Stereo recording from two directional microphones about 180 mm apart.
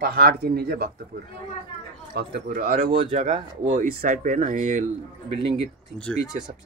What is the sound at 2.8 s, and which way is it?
Speech, 40° right (ahead or behind).